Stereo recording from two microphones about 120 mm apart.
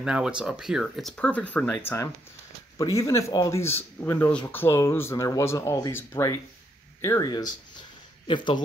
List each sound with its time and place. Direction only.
0.0 s speech: 5° right (ahead or behind)
1.1 s speech: 10° left (ahead or behind)
7.2 s speech: 35° left (ahead or behind)